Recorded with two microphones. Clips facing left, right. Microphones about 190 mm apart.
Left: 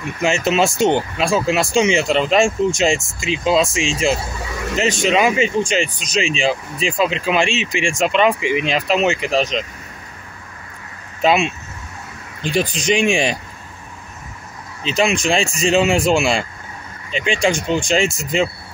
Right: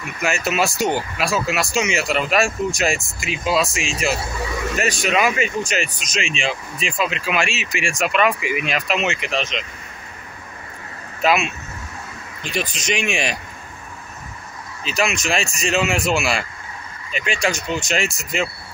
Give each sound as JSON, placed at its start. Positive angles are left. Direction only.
{"t": 0.2, "sound": "speech", "side_deg": 25}
{"t": 11.2, "sound": "speech", "side_deg": 30}
{"t": 14.8, "sound": "speech", "side_deg": 30}